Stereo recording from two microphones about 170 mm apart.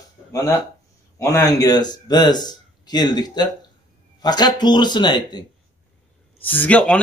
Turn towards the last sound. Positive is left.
turn(degrees=5)  # may be behind; listen again after turning